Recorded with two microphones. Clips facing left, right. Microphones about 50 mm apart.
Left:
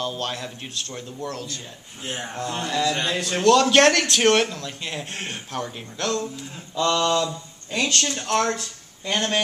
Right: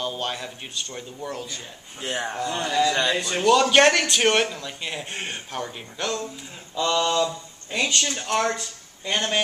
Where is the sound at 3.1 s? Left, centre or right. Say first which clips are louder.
Left 1 dB; centre.